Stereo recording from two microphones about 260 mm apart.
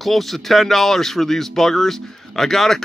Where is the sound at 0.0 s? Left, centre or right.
Centre.